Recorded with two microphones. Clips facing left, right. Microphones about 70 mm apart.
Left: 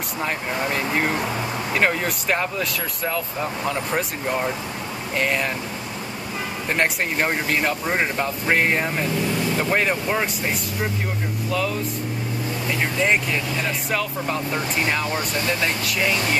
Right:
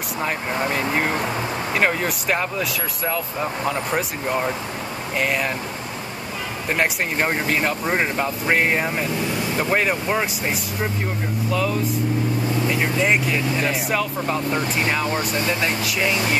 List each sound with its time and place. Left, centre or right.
0.7 s speech: centre
6.7 s speech: centre
15.0 s speech: right
15.6 s speech: centre